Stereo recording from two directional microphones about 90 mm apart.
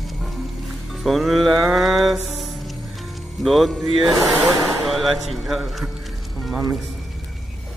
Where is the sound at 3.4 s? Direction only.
Centre (ahead or behind).